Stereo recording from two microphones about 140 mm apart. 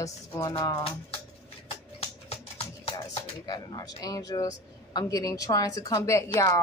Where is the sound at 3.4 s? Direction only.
30° left (ahead or behind).